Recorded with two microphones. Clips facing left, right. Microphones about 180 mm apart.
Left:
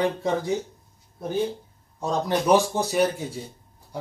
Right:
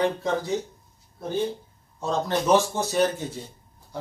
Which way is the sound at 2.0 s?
15° left (ahead or behind).